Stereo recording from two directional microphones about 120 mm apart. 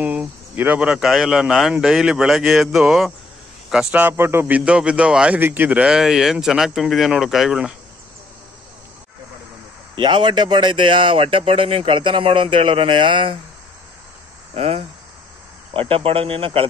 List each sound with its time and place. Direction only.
0.0 s a man's voice: 15° right (ahead or behind)
9.9 s speech: 40° right (ahead or behind)
14.5 s cricket: 55° right (ahead or behind)
15.7 s speech: 50° right (ahead or behind)